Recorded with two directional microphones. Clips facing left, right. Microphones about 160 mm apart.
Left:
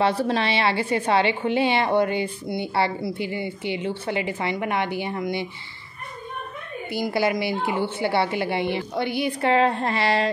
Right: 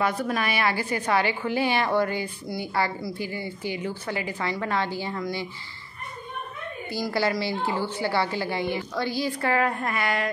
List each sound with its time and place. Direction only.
0.0 s a woman's voice: 30° left (ahead or behind)
6.9 s a woman's voice: 20° left (ahead or behind)